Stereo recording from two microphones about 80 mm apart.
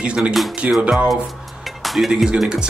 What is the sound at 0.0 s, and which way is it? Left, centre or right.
Speech, centre.